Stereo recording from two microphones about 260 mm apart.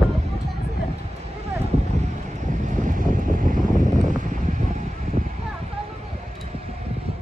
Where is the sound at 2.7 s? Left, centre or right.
Right.